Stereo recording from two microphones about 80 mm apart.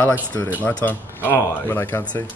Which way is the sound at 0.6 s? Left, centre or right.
Left.